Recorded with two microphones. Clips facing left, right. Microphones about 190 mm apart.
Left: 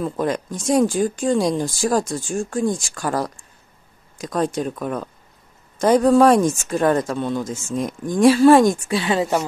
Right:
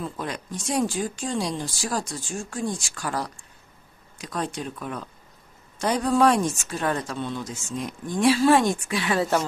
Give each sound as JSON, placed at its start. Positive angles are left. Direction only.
{"t": 0.0, "sound": "speech", "side_deg": 45}
{"t": 8.8, "sound": "a woman's voice", "side_deg": 25}
{"t": 9.2, "sound": "speech", "side_deg": 15}